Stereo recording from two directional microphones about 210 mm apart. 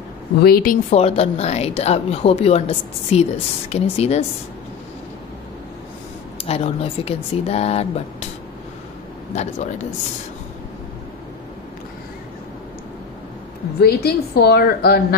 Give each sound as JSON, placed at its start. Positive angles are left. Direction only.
{"t": 0.4, "sound": "a woman's voice", "side_deg": 45}
{"t": 0.8, "sound": "a woman's voice", "side_deg": 30}
{"t": 6.4, "sound": "a woman's voice", "side_deg": 30}
{"t": 9.3, "sound": "speech", "side_deg": 35}
{"t": 13.7, "sound": "a woman's voice", "side_deg": 50}